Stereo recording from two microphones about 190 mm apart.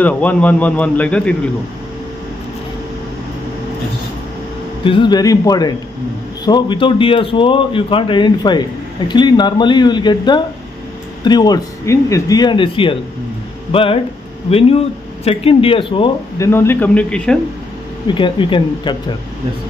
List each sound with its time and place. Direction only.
0.0 s a man's voice: 10° left (ahead or behind)
4.8 s a man's voice: 25° left (ahead or behind)
16.3 s a man's voice: 15° left (ahead or behind)
18.0 s a man's voice: 25° left (ahead or behind)